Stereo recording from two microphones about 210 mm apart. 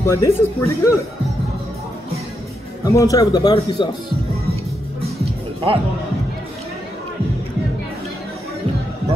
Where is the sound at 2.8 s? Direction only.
15° left (ahead or behind).